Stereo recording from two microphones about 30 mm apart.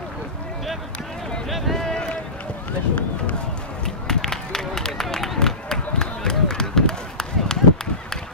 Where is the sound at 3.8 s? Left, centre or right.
Centre.